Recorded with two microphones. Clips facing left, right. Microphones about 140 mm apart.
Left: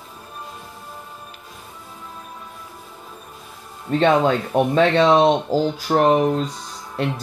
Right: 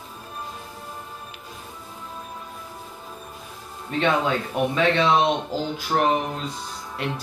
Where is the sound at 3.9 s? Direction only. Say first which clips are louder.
Left 6 dB; 45° left (ahead or behind).